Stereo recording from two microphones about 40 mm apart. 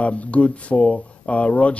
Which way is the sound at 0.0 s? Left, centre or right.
Left.